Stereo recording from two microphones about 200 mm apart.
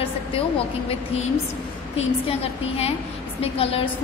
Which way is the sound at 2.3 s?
30° left (ahead or behind).